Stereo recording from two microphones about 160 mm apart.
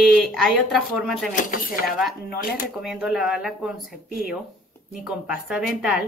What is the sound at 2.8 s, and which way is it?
A woman's voice, centre (ahead or behind).